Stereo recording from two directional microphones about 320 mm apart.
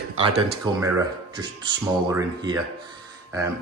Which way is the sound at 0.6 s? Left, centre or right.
Centre.